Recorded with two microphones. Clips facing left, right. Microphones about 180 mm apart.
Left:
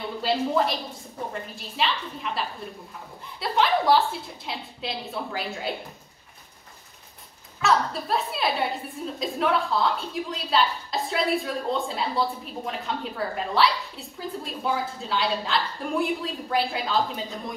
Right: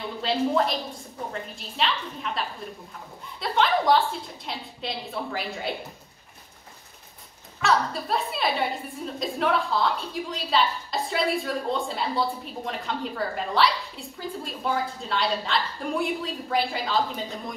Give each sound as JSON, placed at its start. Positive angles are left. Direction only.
{"t": 0.2, "sound": "a woman's voice", "side_deg": 0}
{"t": 7.6, "sound": "a woman's voice", "side_deg": 0}